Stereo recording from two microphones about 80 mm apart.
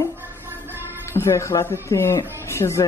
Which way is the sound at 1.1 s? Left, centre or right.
Left.